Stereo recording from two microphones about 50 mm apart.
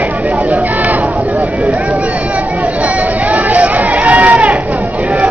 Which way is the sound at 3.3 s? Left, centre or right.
Right.